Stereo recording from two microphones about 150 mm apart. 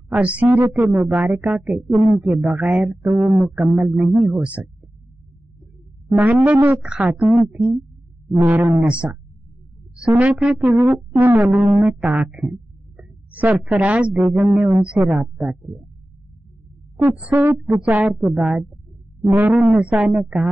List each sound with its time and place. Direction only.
0.1 s speech: 10° right (ahead or behind)
6.1 s speech: 10° right (ahead or behind)
17.0 s speech: 15° right (ahead or behind)